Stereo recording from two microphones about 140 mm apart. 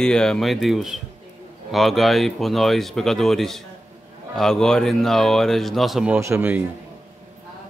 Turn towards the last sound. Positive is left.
turn(degrees=-15)  # may be behind; listen again after turning